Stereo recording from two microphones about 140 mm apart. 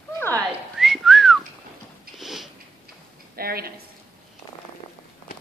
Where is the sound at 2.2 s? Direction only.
Centre (ahead or behind).